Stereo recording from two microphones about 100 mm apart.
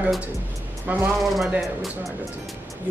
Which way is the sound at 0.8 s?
20° right (ahead or behind).